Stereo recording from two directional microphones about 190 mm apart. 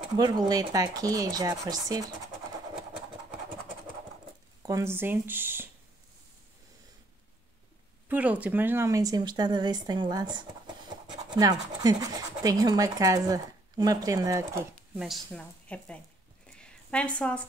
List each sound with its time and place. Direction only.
0.1 s speech: 20° right (ahead or behind)
4.6 s speech: 15° right (ahead or behind)
8.1 s speech: 10° right (ahead or behind)
11.1 s pant: 20° right (ahead or behind)
11.8 s speech: 20° right (ahead or behind)
15.0 s speech: centre (ahead or behind)
16.5 s a sound: 5° left (ahead or behind)